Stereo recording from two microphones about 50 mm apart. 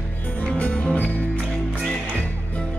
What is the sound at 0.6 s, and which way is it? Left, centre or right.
Music, left.